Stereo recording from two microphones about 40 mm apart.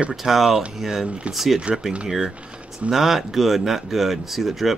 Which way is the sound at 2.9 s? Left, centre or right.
Centre.